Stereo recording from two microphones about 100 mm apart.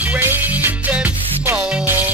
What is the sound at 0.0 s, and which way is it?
Music, 20° right (ahead or behind).